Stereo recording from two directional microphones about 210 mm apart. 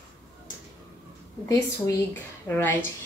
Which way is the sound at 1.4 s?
10° left (ahead or behind).